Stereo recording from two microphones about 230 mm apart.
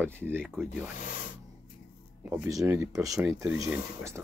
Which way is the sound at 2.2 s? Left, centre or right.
Centre.